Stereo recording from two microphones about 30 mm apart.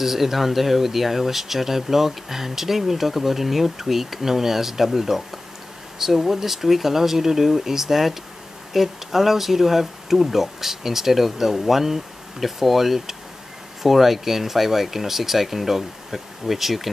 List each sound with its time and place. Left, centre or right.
0.0 s speech: centre